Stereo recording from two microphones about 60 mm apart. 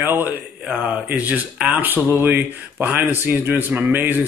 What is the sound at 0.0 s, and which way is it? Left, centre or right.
Speech, right.